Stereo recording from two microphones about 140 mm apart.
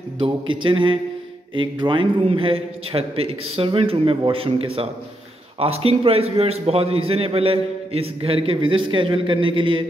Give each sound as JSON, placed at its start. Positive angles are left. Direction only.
{"t": 0.2, "sound": "a man's voice", "side_deg": -35}